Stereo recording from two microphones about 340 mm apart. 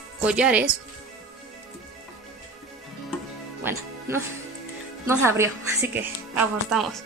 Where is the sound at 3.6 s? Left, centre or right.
Centre.